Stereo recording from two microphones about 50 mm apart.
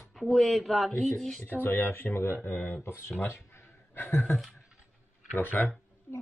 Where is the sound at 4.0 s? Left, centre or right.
Left.